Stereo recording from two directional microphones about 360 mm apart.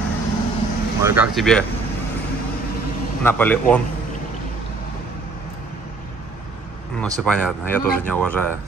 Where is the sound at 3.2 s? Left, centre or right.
Centre.